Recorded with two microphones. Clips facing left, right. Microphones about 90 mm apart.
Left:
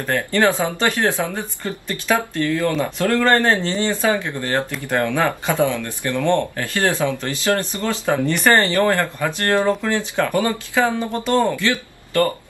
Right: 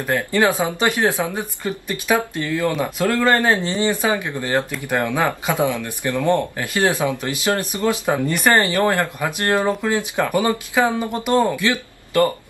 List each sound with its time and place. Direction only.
0.0 s speech: 15° right (ahead or behind)